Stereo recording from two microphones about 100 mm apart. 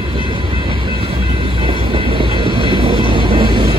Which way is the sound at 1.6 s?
60° right (ahead or behind).